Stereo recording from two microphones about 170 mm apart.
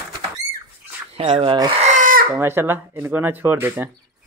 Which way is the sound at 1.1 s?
35° right (ahead or behind).